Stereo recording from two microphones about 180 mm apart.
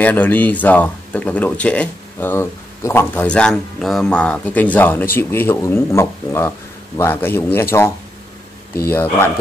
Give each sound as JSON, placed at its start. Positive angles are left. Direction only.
{"t": 0.0, "sound": "speech", "side_deg": 10}
{"t": 8.7, "sound": "speech", "side_deg": 15}